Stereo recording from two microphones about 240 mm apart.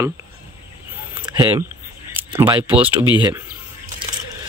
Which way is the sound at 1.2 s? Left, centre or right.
Centre.